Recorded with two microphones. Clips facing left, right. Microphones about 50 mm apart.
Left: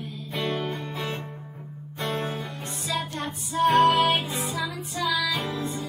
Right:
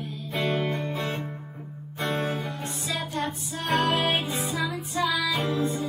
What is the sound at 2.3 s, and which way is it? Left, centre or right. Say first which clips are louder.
Music: right 2 dB; centre.